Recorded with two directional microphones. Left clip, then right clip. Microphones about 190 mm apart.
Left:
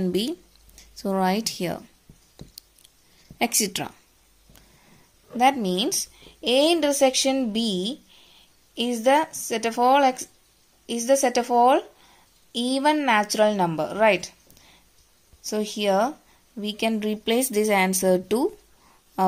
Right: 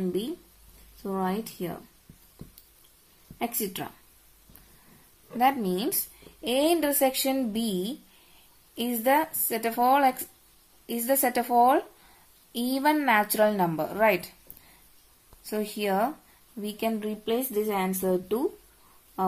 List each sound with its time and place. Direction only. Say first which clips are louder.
1.0 s speech: left 7 dB; 40° left (ahead or behind)
3.3 s speech: left 7 dB; 35° left (ahead or behind)
5.4 s a woman's voice: left 4 dB; 20° left (ahead or behind)
15.4 s speech: left 5 dB; 20° left (ahead or behind); by 18.5 s 35° left (ahead or behind)